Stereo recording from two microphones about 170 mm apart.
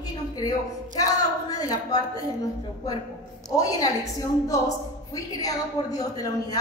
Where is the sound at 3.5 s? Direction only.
20° left (ahead or behind).